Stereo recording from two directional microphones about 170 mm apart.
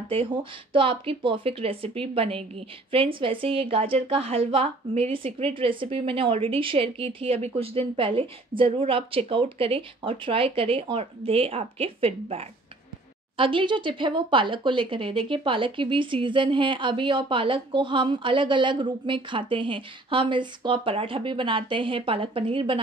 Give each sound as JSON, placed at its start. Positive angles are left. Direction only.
{"t": 0.1, "sound": "a woman's voice", "side_deg": -30}